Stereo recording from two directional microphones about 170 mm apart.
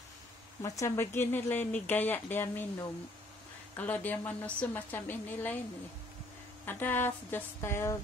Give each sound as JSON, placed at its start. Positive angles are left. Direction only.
{"t": 0.6, "sound": "speech", "side_deg": 20}
{"t": 3.7, "sound": "speech", "side_deg": 10}
{"t": 6.6, "sound": "speech", "side_deg": 10}